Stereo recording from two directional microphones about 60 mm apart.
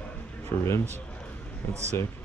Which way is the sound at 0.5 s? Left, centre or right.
Left.